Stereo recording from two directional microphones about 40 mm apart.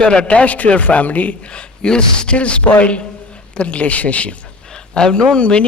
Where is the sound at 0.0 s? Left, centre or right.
Left.